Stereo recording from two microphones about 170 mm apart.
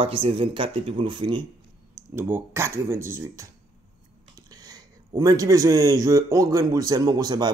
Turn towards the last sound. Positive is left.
turn(degrees=-25)  # may be behind; listen again after turning